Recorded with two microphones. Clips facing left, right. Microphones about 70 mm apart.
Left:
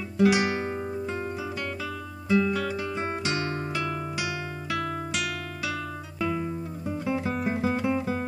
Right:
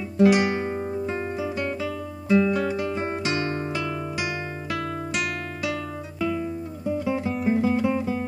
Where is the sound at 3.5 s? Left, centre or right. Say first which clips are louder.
Right 2 dB; right.